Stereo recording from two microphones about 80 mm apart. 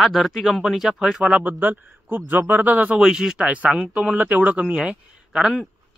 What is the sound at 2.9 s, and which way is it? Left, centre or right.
A man's voice, centre.